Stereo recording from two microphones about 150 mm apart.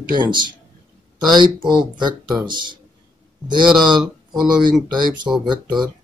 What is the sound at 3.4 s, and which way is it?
Speech, 30° right (ahead or behind).